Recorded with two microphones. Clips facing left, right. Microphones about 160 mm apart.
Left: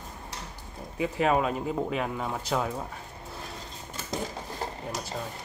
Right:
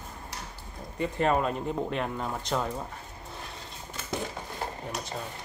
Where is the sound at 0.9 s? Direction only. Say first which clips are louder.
Left 1 dB; 5° left (ahead or behind).